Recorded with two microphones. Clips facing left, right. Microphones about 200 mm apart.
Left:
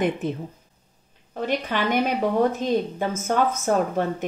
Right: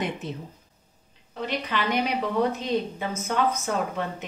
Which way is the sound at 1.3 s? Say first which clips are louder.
Left 4 dB; 50° left (ahead or behind).